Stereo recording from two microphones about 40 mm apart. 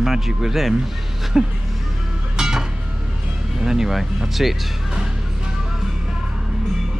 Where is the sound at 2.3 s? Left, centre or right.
Centre.